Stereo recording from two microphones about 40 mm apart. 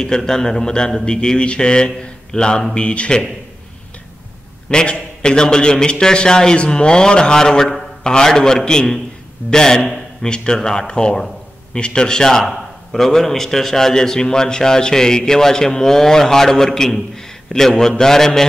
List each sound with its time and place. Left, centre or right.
0.0 s speech: centre
4.6 s a man's voice: centre